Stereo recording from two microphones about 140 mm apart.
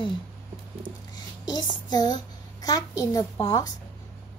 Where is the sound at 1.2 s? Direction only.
30° left (ahead or behind).